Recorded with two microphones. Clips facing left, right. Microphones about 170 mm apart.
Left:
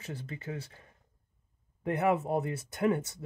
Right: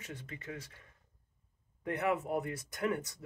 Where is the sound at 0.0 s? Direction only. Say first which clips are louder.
Left 5 dB; 30° left (ahead or behind).